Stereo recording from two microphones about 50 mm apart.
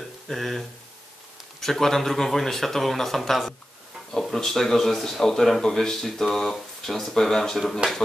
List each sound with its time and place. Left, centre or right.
0.3 s speech: centre
7.8 s speech: right